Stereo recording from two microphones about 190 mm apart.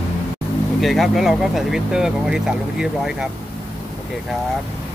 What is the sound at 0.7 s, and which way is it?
Speech, centre (ahead or behind).